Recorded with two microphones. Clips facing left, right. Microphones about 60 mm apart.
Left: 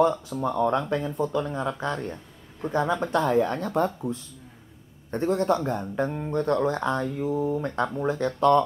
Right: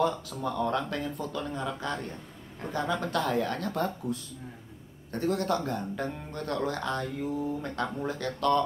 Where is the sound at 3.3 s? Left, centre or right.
Left.